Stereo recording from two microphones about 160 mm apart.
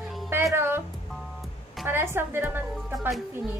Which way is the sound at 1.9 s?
15° right (ahead or behind).